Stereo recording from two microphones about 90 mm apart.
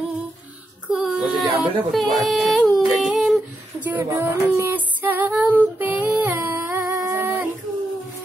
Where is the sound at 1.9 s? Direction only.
Centre (ahead or behind).